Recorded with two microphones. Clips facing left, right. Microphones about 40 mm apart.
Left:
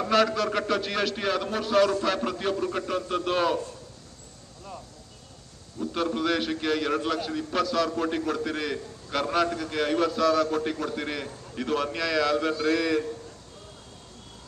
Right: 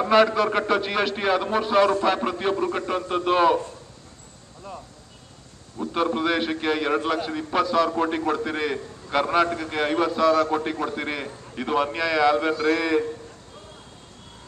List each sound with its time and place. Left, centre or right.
0.1 s a man's voice: centre
5.8 s a man's voice: centre